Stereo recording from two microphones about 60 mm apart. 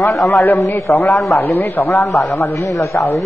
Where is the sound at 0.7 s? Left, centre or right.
Left.